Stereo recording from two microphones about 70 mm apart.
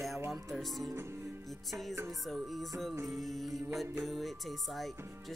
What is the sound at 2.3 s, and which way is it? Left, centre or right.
Music, centre.